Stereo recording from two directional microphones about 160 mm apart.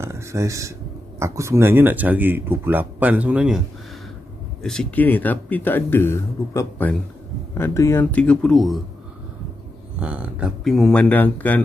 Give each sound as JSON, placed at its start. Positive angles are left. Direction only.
{"t": 0.0, "sound": "speech", "side_deg": -15}
{"t": 4.6, "sound": "speech", "side_deg": 5}
{"t": 9.9, "sound": "speech", "side_deg": -10}